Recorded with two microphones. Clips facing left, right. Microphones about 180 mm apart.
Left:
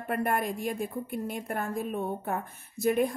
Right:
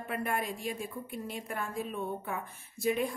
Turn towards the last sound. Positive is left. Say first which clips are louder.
# left 5 dB
turn(degrees=45)  # may be behind; listen again after turning